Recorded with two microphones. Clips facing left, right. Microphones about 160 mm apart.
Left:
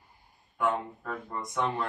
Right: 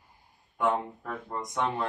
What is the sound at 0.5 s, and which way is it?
Speech, 20° right (ahead or behind).